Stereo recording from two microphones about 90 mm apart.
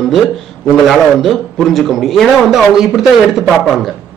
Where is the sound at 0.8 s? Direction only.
Centre (ahead or behind).